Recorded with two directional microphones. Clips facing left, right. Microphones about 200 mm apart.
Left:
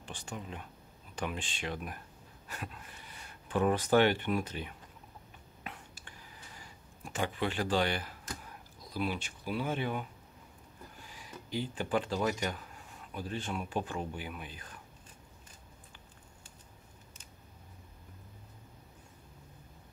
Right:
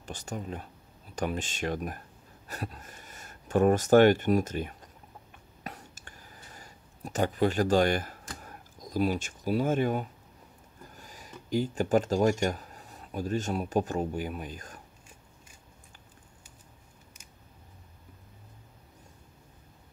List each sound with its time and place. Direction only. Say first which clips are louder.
0.0 s speech: right 5 dB; 40° right (ahead or behind)
5.6 s a sound: right 4 dB; 40° right (ahead or behind)
11.0 s speech: right 2 dB; 45° right (ahead or behind)